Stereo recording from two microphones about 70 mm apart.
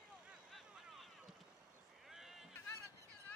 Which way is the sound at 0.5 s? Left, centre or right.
Centre.